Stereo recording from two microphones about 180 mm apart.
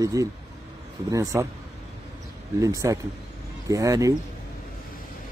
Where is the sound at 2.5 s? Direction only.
20° right (ahead or behind).